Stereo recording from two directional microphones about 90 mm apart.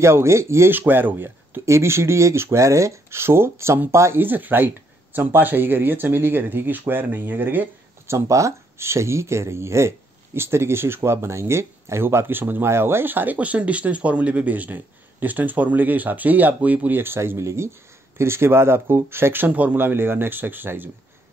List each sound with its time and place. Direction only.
0.0 s speech: 30° right (ahead or behind)
8.1 s speech: 35° right (ahead or behind)